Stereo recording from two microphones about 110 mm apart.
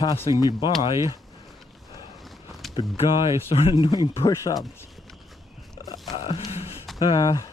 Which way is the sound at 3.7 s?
40° left (ahead or behind).